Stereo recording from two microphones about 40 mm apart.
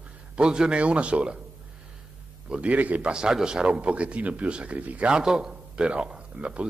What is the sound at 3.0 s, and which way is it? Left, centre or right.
Speech, centre.